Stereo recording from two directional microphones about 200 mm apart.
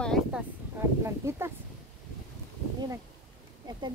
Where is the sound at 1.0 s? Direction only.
15° right (ahead or behind).